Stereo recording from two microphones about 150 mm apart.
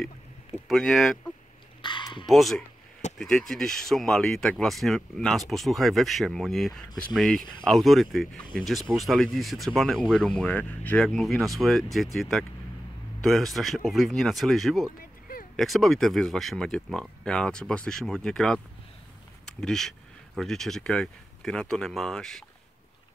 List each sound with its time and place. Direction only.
0.7 s speech: 5° left (ahead or behind)
1.8 s a sound: 30° left (ahead or behind)
2.2 s speech: centre (ahead or behind)
11.1 s speech: centre (ahead or behind)